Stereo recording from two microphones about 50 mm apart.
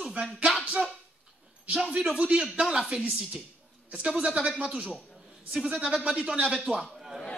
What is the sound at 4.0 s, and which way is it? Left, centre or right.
Speech, centre.